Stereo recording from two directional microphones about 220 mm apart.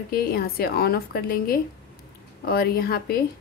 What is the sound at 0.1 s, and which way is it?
Speech, 45° left (ahead or behind).